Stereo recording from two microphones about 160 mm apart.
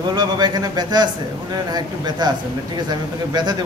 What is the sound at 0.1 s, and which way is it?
A man's voice, 25° right (ahead or behind).